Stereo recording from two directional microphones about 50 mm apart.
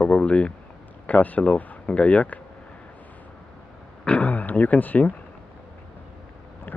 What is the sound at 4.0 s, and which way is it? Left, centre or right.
Speech, left.